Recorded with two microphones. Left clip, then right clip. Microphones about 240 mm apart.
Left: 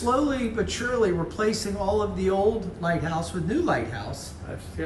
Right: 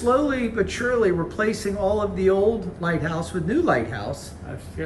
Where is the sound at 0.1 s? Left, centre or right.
Centre.